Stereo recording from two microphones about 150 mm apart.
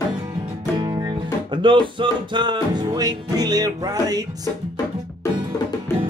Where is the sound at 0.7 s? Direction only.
25° right (ahead or behind).